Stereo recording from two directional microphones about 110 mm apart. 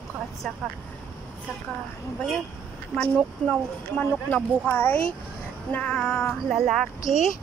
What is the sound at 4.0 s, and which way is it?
Speech, 15° left (ahead or behind).